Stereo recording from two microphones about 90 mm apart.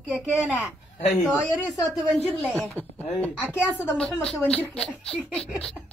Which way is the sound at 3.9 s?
5° left (ahead or behind).